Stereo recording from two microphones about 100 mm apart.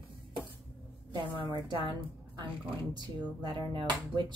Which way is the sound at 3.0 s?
50° right (ahead or behind).